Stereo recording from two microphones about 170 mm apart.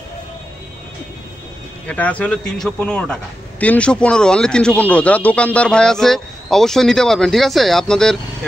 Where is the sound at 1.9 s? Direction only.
10° left (ahead or behind).